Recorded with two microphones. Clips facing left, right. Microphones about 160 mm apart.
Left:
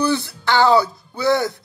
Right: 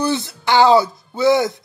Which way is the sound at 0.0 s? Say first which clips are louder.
Even; 20° right (ahead or behind).